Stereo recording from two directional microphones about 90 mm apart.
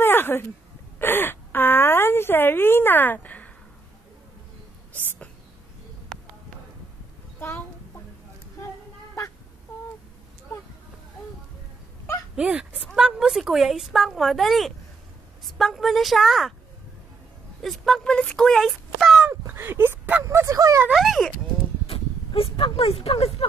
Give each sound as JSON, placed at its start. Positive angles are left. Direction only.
{"t": 0.0, "sound": "a sound", "side_deg": 25}
{"t": 4.9, "sound": "whispering", "side_deg": 20}
{"t": 7.3, "sound": "a sound", "side_deg": 25}
{"t": 12.4, "sound": "speech", "side_deg": -10}
{"t": 17.6, "sound": "speech", "side_deg": 0}
{"t": 19.4, "sound": "a sound", "side_deg": -25}
{"t": 20.2, "sound": "speech", "side_deg": -35}
{"t": 20.9, "sound": "speech", "side_deg": 0}
{"t": 21.8, "sound": "speech", "side_deg": 90}